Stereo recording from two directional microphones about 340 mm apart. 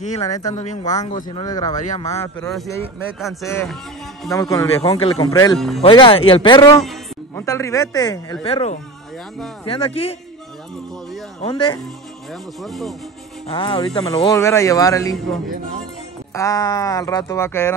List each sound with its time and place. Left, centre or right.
0.0 s speech: centre
5.8 s speech: centre
11.4 s speech: centre
12.6 s speech: centre
13.5 s speech: centre
16.3 s speech: centre